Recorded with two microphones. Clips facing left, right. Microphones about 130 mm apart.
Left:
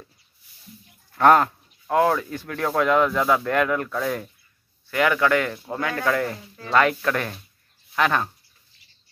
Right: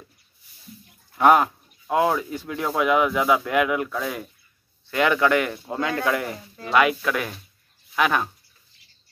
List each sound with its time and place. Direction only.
1.1 s speech: 10° right (ahead or behind)
4.9 s speech: 20° right (ahead or behind)